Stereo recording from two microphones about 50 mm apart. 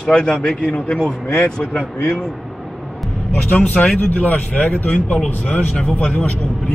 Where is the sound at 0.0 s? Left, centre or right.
Left.